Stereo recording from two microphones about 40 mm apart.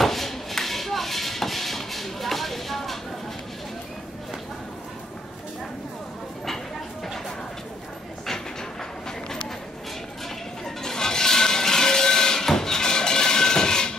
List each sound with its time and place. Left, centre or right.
0.0 s music: centre
10.8 s music: centre